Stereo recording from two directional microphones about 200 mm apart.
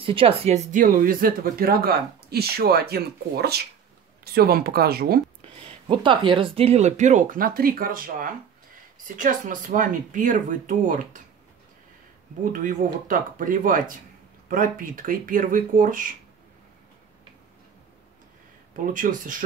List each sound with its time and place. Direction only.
0.0 s speech: 25° right (ahead or behind); by 5.2 s 50° right (ahead or behind)
5.4 s speech: 25° right (ahead or behind); by 11.2 s 40° right (ahead or behind)
12.5 s speech: 40° right (ahead or behind)
18.7 s speech: 40° right (ahead or behind)